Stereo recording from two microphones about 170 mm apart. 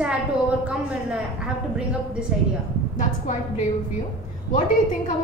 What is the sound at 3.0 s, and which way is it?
Speech, 45° left (ahead or behind).